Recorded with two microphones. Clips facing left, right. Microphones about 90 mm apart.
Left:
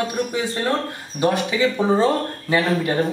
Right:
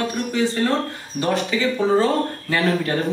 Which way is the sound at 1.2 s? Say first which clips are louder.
Left 2 dB; 15° left (ahead or behind).